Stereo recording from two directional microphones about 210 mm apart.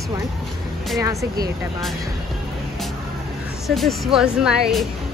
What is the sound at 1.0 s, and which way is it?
Speech, 15° right (ahead or behind).